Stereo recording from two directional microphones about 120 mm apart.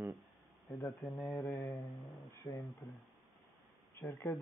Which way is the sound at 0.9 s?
Centre (ahead or behind).